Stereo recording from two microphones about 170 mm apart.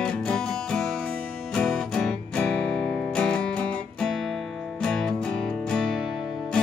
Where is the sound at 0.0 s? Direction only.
5° left (ahead or behind).